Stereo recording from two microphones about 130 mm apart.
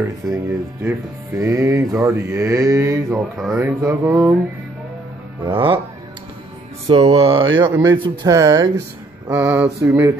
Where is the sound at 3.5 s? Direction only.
15° right (ahead or behind).